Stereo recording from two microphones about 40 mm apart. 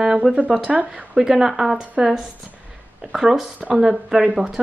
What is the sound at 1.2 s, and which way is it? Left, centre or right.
Speech, centre.